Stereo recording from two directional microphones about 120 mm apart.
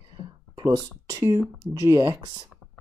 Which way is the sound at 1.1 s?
30° right (ahead or behind).